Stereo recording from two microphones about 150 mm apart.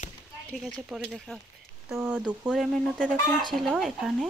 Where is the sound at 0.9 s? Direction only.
Centre (ahead or behind).